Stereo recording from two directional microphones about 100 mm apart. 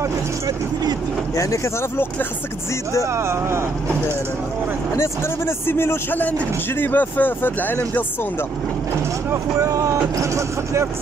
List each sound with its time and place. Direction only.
1.3 s a man's voice: 30° left (ahead or behind)
3.1 s speech: 25° right (ahead or behind)
4.9 s a man's voice: 25° left (ahead or behind)
9.3 s speech: 35° right (ahead or behind)